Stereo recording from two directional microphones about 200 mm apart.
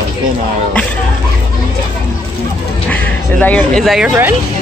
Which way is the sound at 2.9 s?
10° left (ahead or behind).